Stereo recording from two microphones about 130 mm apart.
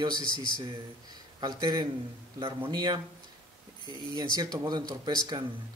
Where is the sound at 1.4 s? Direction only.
35° right (ahead or behind).